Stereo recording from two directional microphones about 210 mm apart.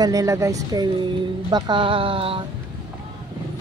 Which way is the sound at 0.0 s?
15° right (ahead or behind).